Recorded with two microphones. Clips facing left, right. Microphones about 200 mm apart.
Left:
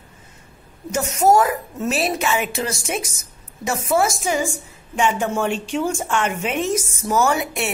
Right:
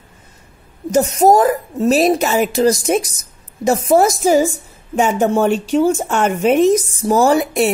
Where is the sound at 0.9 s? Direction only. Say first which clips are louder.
Right 5 dB; 35° right (ahead or behind).